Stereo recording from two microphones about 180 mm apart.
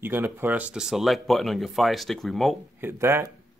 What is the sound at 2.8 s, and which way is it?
Speech, 10° right (ahead or behind).